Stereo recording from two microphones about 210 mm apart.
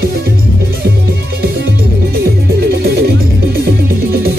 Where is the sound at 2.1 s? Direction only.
45° right (ahead or behind).